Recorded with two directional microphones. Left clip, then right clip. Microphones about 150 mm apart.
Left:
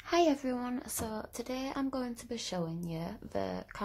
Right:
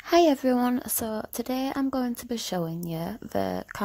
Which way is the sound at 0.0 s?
55° right (ahead or behind).